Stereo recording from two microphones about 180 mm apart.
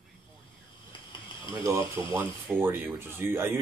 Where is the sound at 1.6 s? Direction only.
15° right (ahead or behind).